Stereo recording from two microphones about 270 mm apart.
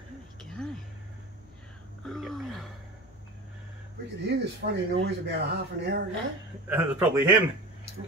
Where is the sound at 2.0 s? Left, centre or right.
Centre.